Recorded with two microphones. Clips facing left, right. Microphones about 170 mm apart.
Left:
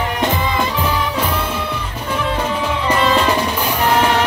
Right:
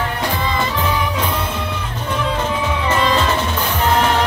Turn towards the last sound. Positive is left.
turn(degrees=10)  # may be behind; listen again after turning